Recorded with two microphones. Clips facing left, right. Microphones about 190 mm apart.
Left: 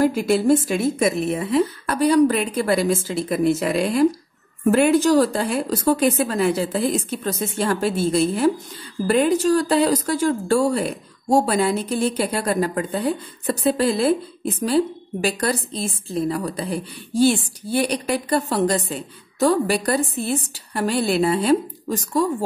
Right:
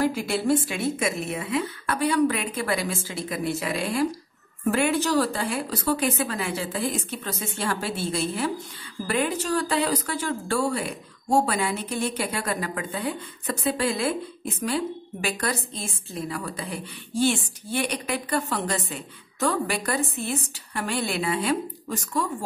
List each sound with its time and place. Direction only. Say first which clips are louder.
0.0 s speech: left 6 dB; 45° left (ahead or behind)